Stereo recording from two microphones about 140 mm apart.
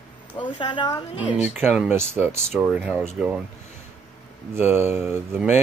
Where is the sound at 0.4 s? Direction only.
35° left (ahead or behind).